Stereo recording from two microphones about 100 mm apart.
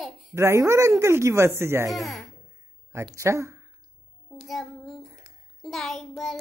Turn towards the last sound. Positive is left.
turn(degrees=5)  # may be behind; listen again after turning